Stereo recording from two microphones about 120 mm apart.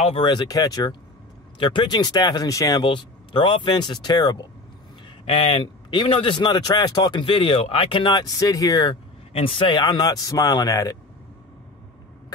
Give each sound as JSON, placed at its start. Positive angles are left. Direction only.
{"t": 0.2, "sound": "speech", "side_deg": 35}
{"t": 2.8, "sound": "speech", "side_deg": 45}
{"t": 5.2, "sound": "speech", "side_deg": 50}
{"t": 9.3, "sound": "speech", "side_deg": 45}